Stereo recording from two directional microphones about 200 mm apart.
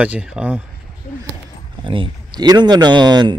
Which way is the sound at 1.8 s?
25° right (ahead or behind).